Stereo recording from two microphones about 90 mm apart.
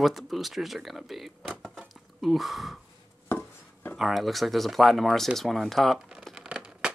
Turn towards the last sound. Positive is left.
turn(degrees=-10)  # may be behind; listen again after turning